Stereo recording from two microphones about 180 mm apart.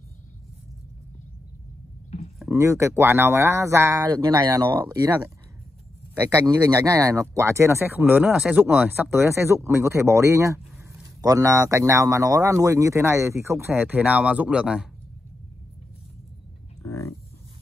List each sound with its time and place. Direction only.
2.5 s speech: 15° right (ahead or behind)
6.4 s speech: 20° right (ahead or behind)